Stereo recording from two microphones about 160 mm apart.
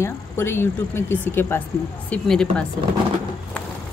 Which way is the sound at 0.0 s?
15° left (ahead or behind).